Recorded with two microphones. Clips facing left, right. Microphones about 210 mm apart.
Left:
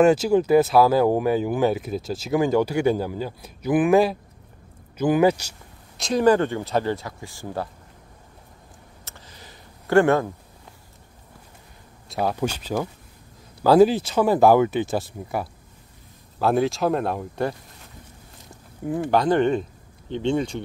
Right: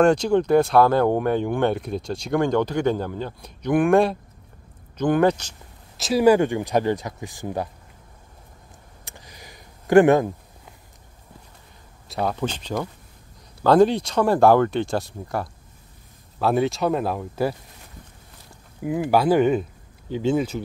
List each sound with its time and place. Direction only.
0.0 s speech: 5° left (ahead or behind)
5.9 s speech: 5° right (ahead or behind)
9.0 s a sound: 15° right (ahead or behind)
12.1 s speech: 5° left (ahead or behind)
18.8 s speech: 5° right (ahead or behind)